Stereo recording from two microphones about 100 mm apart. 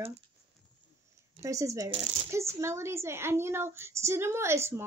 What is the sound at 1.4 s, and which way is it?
A child's voice, 30° right (ahead or behind).